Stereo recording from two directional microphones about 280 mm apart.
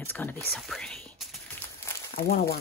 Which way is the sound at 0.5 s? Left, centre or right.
Centre.